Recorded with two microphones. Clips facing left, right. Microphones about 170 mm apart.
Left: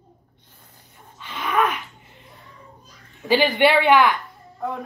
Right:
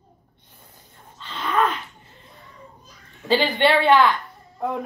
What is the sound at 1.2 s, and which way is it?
Dog, 10° left (ahead or behind).